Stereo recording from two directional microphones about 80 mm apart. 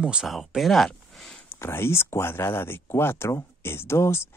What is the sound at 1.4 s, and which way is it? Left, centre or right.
Speech, left.